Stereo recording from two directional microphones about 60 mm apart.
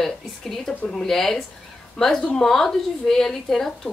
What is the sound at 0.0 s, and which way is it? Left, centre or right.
A woman's voice, centre.